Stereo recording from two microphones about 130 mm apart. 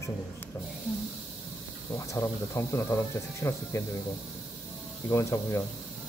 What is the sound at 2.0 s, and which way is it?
Speech, 20° left (ahead or behind).